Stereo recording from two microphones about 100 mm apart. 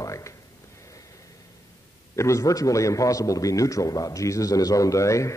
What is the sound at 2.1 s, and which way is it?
A man's voice, 30° left (ahead or behind).